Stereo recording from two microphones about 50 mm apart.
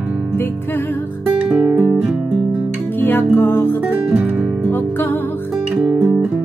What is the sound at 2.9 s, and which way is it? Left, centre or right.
Music, left.